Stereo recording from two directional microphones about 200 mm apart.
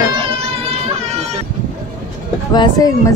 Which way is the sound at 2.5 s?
20° left (ahead or behind).